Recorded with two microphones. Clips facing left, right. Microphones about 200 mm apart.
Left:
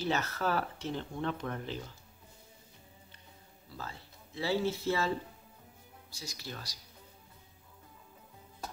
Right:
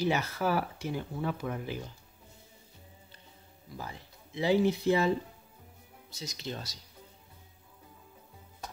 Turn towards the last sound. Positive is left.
turn(degrees=-25)  # may be behind; listen again after turning